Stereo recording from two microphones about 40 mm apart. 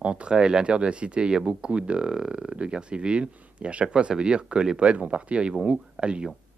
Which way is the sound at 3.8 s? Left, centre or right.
Centre.